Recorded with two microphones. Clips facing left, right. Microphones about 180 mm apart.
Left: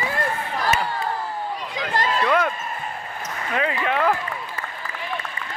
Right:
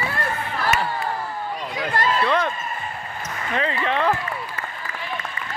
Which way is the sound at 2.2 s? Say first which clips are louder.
Left 1 dB; 5° left (ahead or behind).